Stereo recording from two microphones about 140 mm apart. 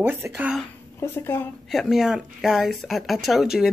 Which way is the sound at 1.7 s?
Centre (ahead or behind).